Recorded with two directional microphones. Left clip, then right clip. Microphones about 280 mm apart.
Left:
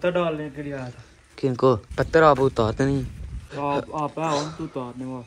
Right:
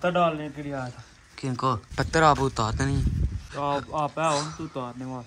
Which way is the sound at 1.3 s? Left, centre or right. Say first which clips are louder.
Left 7 dB; centre.